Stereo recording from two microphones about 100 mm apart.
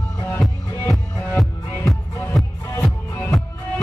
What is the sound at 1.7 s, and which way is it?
Music, 25° left (ahead or behind).